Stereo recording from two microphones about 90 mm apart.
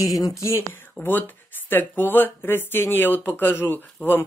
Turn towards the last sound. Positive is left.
turn(degrees=25)  # may be behind; listen again after turning